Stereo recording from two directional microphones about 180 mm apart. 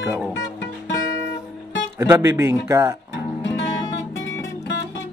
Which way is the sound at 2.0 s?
15° right (ahead or behind).